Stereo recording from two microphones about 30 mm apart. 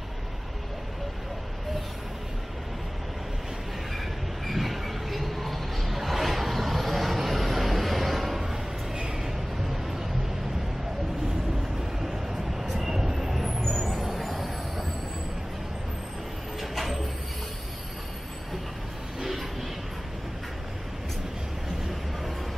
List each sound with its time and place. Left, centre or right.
4.5 s vehicle: centre
8.9 s a sound: centre
12.0 s vehicle: centre
13.7 s vehicle: centre
16.7 s train: centre
19.1 s vehicle: centre